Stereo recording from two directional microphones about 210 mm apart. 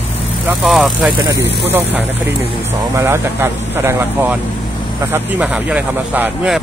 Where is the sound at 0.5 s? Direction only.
Centre (ahead or behind).